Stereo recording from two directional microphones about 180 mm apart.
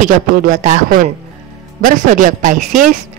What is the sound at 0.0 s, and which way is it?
Speech, 45° right (ahead or behind).